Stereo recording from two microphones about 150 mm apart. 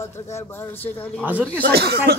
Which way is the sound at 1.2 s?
10° right (ahead or behind).